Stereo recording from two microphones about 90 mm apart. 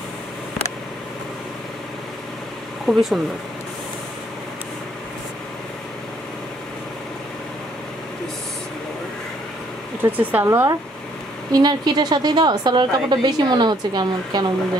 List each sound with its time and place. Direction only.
2.9 s speech: 5° right (ahead or behind)
10.0 s speech: 30° right (ahead or behind)
11.5 s a woman's voice: 55° right (ahead or behind)